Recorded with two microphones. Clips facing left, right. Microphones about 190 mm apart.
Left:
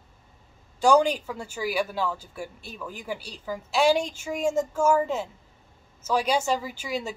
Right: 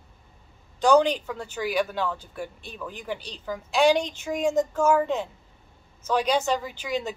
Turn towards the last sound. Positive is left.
turn(degrees=5)  # may be behind; listen again after turning